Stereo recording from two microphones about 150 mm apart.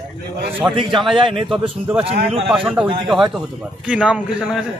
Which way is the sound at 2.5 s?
5° right (ahead or behind).